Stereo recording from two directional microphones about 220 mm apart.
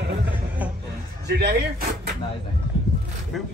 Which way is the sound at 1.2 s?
45° right (ahead or behind).